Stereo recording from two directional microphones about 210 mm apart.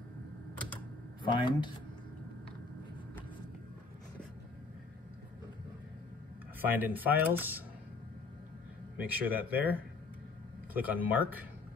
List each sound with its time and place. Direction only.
1.2 s speech: 20° left (ahead or behind)
6.6 s speech: 10° right (ahead or behind)
9.0 s speech: 10° right (ahead or behind)